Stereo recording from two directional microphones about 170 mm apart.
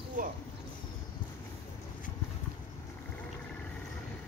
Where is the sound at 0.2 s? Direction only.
50° right (ahead or behind).